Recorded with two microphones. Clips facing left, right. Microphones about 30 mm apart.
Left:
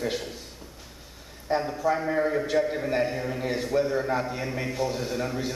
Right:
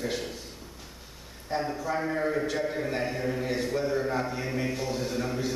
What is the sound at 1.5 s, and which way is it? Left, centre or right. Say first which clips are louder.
Speech: left 4 dB; centre.